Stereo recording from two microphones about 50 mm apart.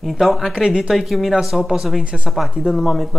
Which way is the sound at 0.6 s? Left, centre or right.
Centre.